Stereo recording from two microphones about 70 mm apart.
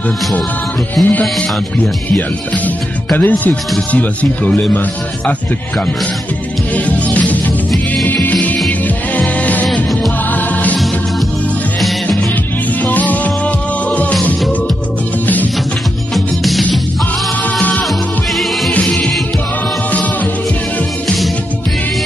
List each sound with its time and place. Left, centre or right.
1.0 s music: centre
2.1 s speech: left
6.7 s music: left
12.8 s music: left
17.6 s music: left
18.3 s music: centre
18.7 s music: centre